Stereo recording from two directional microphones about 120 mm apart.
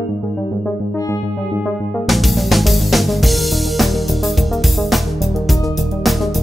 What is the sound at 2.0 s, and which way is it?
Music, centre (ahead or behind).